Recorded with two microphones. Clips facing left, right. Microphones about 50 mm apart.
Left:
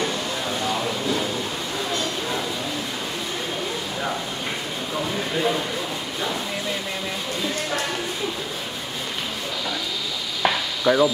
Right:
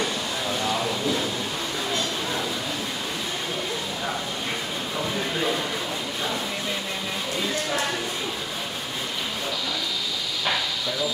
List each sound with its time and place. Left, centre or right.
10.9 s speech: left